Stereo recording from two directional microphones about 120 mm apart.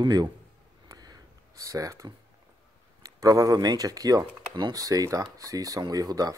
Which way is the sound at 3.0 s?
30° right (ahead or behind).